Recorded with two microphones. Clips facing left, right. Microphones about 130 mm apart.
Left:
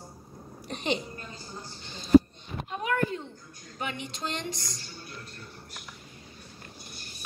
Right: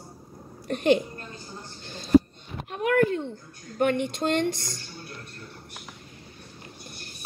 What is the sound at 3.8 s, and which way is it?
Speech, 55° right (ahead or behind).